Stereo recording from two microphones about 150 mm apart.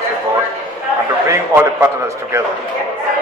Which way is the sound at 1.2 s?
15° right (ahead or behind).